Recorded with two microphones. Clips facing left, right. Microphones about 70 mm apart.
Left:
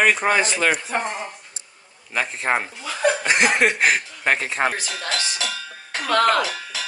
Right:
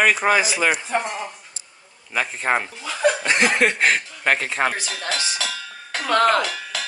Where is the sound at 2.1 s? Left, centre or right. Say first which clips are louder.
Right 1 dB; centre.